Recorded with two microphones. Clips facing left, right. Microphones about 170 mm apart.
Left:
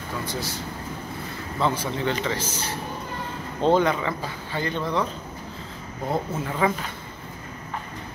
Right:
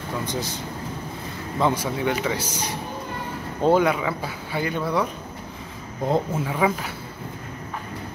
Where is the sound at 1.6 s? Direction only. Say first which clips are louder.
Right 2 dB; 15° right (ahead or behind).